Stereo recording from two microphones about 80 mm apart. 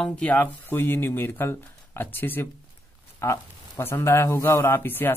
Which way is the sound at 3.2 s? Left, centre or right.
Left.